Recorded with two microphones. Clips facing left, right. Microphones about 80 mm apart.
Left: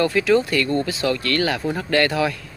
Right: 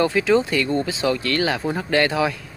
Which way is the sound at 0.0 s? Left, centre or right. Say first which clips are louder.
Even; right.